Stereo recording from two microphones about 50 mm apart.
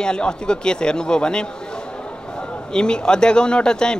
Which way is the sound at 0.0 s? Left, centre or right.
Centre.